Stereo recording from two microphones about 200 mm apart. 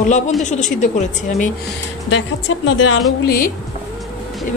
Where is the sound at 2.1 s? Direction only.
75° left (ahead or behind).